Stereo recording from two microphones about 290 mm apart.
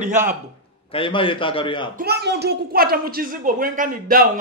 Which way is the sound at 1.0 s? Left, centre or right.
Centre.